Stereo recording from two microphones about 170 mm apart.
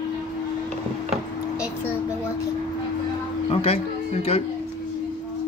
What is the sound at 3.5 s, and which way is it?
Music, 35° left (ahead or behind).